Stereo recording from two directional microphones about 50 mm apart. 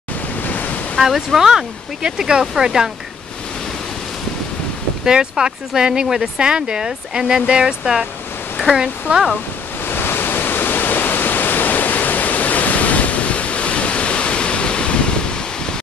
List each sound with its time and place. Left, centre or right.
0.4 s waves: left
0.9 s speech: centre
5.0 s speech: centre
9.8 s pink noise: left; by 15.7 s centre